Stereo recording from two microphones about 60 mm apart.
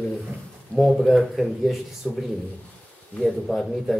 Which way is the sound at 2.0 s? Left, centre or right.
Centre.